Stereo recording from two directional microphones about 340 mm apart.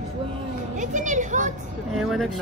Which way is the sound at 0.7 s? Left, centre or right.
Right.